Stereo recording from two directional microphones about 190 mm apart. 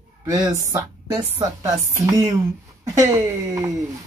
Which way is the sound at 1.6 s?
15° right (ahead or behind).